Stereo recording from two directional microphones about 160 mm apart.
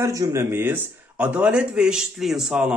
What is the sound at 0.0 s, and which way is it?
A man's voice, 20° right (ahead or behind).